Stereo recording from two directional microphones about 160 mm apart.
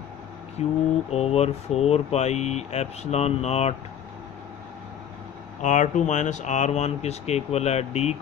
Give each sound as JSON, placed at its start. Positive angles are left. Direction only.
{"t": 0.6, "sound": "speech", "side_deg": 40}
{"t": 5.6, "sound": "speech", "side_deg": 50}